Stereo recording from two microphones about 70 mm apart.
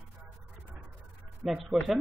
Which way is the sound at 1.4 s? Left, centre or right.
Centre.